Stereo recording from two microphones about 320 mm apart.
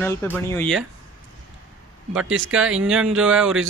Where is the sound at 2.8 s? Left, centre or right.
Centre.